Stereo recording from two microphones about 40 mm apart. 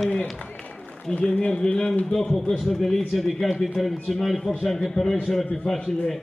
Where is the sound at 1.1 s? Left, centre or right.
Left.